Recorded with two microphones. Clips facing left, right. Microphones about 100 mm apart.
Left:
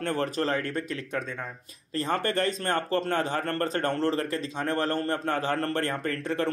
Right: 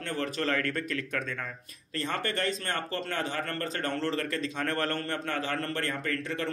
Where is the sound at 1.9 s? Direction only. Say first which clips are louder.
Left 5 dB; 40° left (ahead or behind).